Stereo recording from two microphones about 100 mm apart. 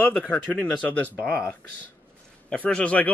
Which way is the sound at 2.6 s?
10° left (ahead or behind).